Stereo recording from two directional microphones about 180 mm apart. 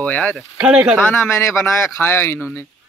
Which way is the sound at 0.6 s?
5° right (ahead or behind).